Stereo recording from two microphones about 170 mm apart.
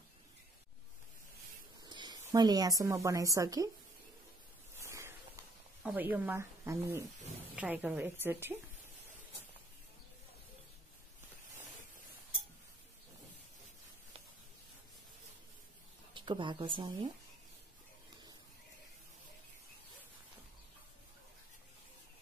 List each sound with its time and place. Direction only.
1.8 s speech: 25° right (ahead or behind)
4.7 s a sound: 15° right (ahead or behind)
5.9 s speech: 10° right (ahead or behind)
16.1 s speech: 30° right (ahead or behind)